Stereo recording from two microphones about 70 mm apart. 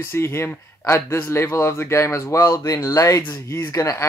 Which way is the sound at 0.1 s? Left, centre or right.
Left.